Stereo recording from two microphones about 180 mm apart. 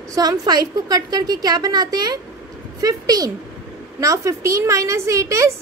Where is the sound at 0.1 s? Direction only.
20° right (ahead or behind).